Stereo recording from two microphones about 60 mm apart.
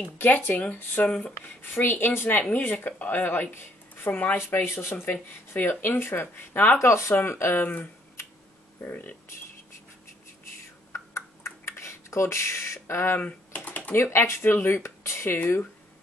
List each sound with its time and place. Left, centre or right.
0.0 s speech: left
4.4 s speech: left
6.8 s speech: left
7.6 s speech: left
10.9 s a sound: left
13.2 s typing: left
13.9 s speech: left